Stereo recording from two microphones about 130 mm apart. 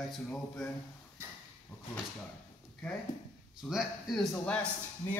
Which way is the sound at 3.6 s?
5° right (ahead or behind).